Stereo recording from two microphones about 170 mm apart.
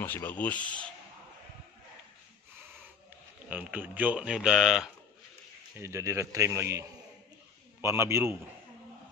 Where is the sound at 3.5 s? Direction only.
10° right (ahead or behind).